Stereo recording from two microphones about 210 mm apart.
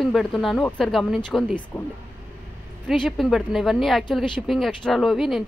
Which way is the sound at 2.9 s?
Centre (ahead or behind).